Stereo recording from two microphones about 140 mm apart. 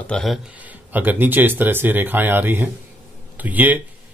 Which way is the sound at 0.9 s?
15° right (ahead or behind).